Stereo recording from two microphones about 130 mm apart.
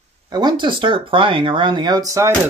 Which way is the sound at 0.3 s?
35° right (ahead or behind).